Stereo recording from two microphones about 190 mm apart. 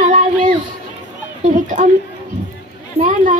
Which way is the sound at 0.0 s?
40° right (ahead or behind).